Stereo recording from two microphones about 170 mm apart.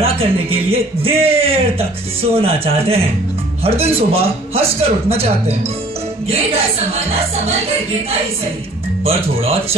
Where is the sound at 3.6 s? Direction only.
35° right (ahead or behind).